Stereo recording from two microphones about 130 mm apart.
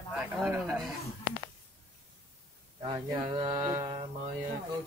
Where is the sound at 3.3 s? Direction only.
35° right (ahead or behind).